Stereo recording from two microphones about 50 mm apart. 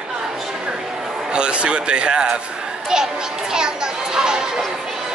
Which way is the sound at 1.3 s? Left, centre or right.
Right.